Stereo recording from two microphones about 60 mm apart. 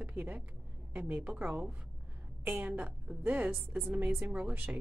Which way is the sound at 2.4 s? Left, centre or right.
Right.